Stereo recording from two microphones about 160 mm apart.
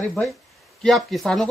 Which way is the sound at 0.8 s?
Centre (ahead or behind).